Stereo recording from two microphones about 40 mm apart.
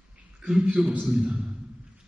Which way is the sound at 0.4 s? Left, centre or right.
Centre.